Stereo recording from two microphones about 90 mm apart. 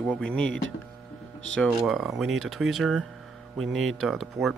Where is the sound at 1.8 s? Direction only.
Centre (ahead or behind).